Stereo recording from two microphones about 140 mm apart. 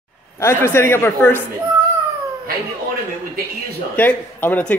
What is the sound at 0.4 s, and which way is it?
Speech, 15° left (ahead or behind).